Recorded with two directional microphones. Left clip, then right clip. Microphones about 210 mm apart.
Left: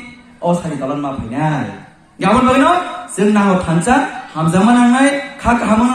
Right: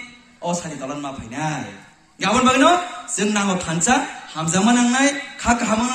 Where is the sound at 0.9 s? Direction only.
10° right (ahead or behind).